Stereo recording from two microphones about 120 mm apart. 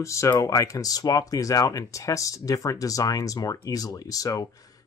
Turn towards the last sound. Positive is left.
turn(degrees=30)  # may be behind; listen again after turning